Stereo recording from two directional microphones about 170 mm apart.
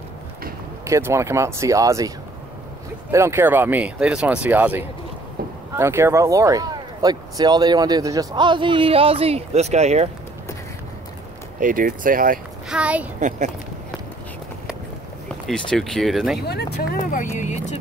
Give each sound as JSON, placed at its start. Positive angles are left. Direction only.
{"t": 0.8, "sound": "speech", "side_deg": -15}
{"t": 11.6, "sound": "speech", "side_deg": -55}
{"t": 12.6, "sound": "speech", "side_deg": -5}
{"t": 15.4, "sound": "speech", "side_deg": 0}
{"t": 16.3, "sound": "speech", "side_deg": 70}
{"t": 17.0, "sound": "speech", "side_deg": 45}